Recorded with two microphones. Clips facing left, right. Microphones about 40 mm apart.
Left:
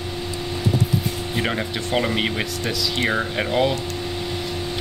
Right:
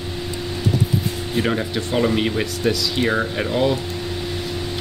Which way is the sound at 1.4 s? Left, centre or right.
Centre.